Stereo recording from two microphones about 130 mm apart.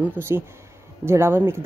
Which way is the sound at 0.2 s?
10° right (ahead or behind).